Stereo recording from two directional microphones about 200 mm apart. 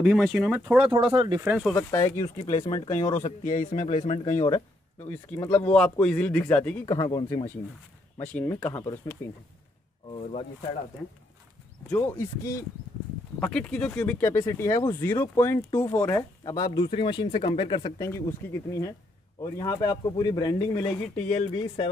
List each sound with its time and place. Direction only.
0.0 s speech: 5° right (ahead or behind)
0.9 s speech: 25° right (ahead or behind)
1.4 s speech: centre (ahead or behind)
1.9 s speech: 15° left (ahead or behind); by 4.4 s 35° left (ahead or behind)
4.4 s speech: 20° left (ahead or behind)
5.7 s speech: 5° left (ahead or behind); by 7.4 s 20° left (ahead or behind)
8.2 s speech: 5° left (ahead or behind)
10.1 s speech: 35° left (ahead or behind)
11.9 s speech: 15° left (ahead or behind)